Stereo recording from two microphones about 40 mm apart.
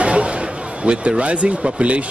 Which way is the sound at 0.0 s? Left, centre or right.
Right.